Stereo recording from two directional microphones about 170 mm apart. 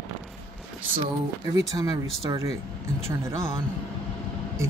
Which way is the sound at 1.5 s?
20° right (ahead or behind).